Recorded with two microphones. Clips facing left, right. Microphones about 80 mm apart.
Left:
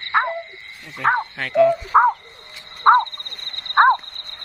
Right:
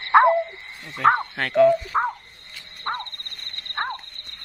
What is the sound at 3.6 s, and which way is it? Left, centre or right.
Horse, left.